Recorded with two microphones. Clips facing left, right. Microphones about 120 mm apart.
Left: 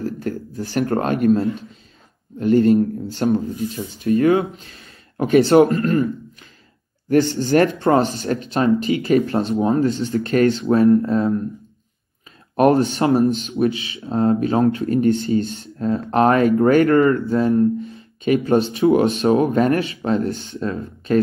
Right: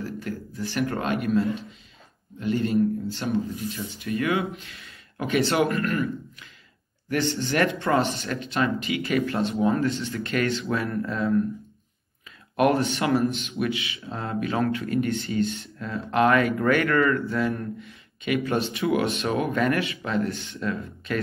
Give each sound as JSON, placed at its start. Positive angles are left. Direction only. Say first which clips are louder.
{"t": 0.0, "sound": "speech", "louder": "left 7 dB", "side_deg": 45}
{"t": 7.1, "sound": "speech", "louder": "left 9 dB", "side_deg": 40}
{"t": 12.5, "sound": "speech", "louder": "left 6 dB", "side_deg": 35}